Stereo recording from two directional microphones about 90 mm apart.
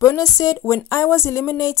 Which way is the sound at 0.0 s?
40° left (ahead or behind).